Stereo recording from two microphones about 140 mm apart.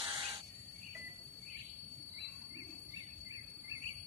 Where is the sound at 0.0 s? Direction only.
35° right (ahead or behind).